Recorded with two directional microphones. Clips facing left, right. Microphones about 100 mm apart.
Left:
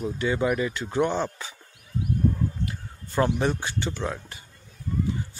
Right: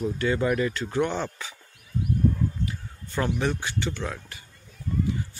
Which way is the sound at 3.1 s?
25° left (ahead or behind).